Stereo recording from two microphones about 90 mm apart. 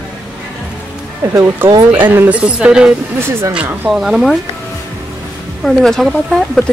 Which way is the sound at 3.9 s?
5° right (ahead or behind).